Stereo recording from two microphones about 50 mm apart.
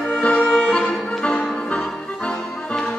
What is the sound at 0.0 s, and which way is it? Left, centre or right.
Music, left.